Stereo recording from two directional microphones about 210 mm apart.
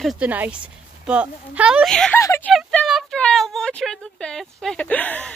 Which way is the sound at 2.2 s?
15° left (ahead or behind).